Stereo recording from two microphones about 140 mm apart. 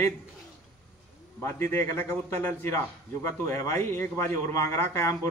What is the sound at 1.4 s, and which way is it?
A man's voice, 20° left (ahead or behind).